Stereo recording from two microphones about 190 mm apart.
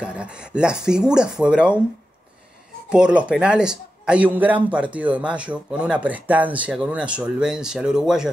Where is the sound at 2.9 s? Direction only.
5° right (ahead or behind).